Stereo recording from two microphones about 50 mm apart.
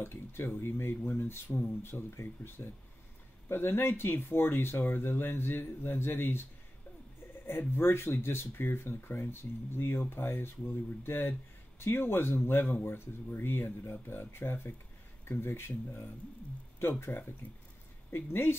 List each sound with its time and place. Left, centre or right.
0.0 s a sound: left
0.6 s speech: left
7.4 s speech: left
16.8 s speech: left
17.4 s speech: left
18.1 s speech: left